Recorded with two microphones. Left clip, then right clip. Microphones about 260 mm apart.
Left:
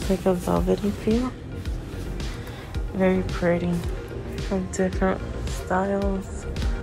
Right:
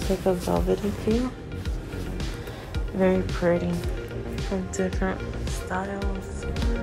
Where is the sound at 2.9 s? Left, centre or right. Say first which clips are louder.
Even; centre.